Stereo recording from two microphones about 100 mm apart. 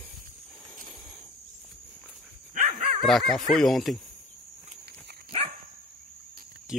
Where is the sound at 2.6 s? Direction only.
90° right.